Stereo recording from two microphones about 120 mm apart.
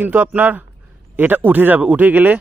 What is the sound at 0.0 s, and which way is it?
A man's voice, 15° right (ahead or behind).